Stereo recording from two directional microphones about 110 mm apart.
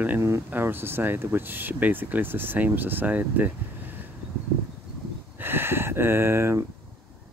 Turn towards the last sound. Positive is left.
turn(degrees=-25)  # may be behind; listen again after turning